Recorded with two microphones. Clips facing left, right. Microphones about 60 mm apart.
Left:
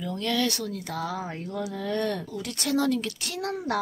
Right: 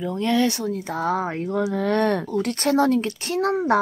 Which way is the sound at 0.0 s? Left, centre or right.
Right.